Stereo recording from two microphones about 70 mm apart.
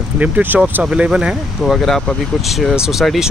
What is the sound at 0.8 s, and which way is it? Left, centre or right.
Speech, centre.